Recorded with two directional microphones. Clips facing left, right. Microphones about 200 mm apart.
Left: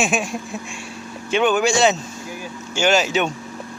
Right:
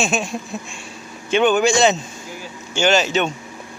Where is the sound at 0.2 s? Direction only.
10° left (ahead or behind).